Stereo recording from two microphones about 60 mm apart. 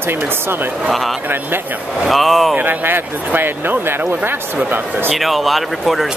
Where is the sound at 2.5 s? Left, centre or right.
Right.